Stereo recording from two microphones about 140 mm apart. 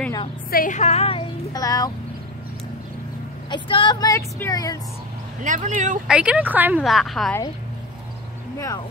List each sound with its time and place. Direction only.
0.5 s a woman's voice: 90° left
0.7 s speech: 50° left (ahead or behind)
1.5 s speech: 25° left (ahead or behind)
3.4 s a woman's voice: 35° left (ahead or behind)
5.4 s speech: 65° right (ahead or behind)
6.0 s speech: 5° right (ahead or behind)
6.8 s a woman's voice: centre (ahead or behind)
8.5 s speech: 25° left (ahead or behind)